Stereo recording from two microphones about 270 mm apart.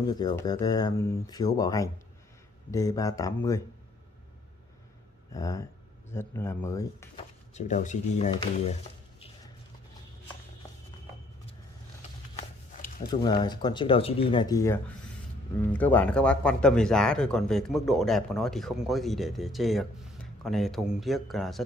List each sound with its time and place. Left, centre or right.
0.0 s speech: centre
5.3 s speech: centre
7.5 s speech: left
13.1 s speech: centre